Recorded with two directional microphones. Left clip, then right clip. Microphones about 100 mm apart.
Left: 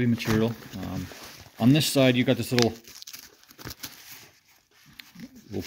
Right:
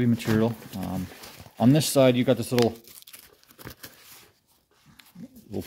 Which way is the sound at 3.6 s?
25° right (ahead or behind).